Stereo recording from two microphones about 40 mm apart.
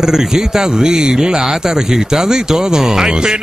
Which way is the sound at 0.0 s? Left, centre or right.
Centre.